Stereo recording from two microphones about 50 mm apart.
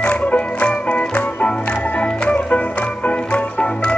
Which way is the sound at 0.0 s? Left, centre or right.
Left.